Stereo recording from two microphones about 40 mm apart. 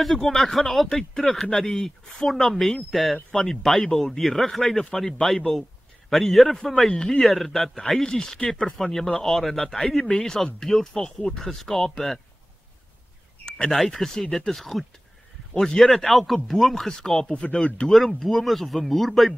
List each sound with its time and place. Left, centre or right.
0.0 s a man's voice: centre
6.9 s speech: centre
7.2 s speech: centre
8.0 s speech: centre
13.7 s speech: centre
15.8 s speech: centre
17.3 s speech: left
17.8 s speech: centre